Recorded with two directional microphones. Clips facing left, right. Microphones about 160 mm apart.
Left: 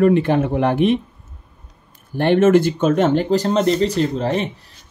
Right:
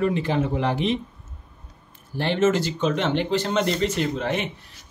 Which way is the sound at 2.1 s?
55° left (ahead or behind).